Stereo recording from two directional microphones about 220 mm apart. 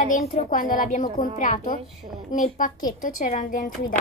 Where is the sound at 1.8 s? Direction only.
Centre (ahead or behind).